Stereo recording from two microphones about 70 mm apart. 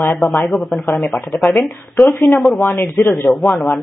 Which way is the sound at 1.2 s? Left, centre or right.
Left.